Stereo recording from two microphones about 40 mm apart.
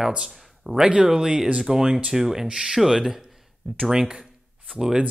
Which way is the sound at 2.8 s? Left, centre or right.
Centre.